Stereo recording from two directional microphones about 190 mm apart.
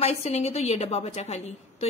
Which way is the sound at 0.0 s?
35° left (ahead or behind).